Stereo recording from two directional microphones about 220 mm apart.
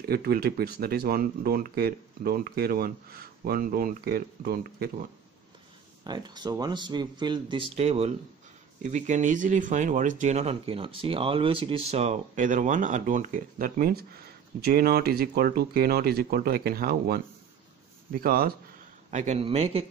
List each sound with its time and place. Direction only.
0.1 s speech: 45° right (ahead or behind)
6.0 s speech: 20° right (ahead or behind); by 17.2 s 45° right (ahead or behind)
18.2 s speech: 40° right (ahead or behind)
19.0 s speech: 30° right (ahead or behind)